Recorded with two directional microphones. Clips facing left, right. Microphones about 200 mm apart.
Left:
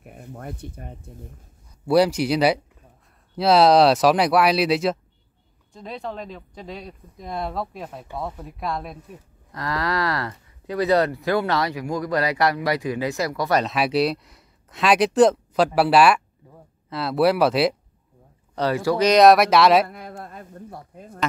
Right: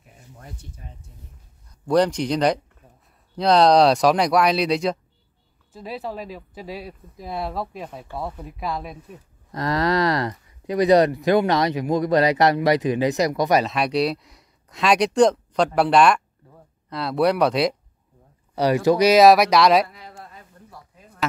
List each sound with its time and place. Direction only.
0.0 s speech: 55° left (ahead or behind)
1.9 s speech: 5° left (ahead or behind)
9.5 s speech: 20° right (ahead or behind)
13.7 s speech: 5° left (ahead or behind)
18.5 s speech: 15° right (ahead or behind)
19.0 s speech: 5° right (ahead or behind)
19.9 s a sound: 55° left (ahead or behind)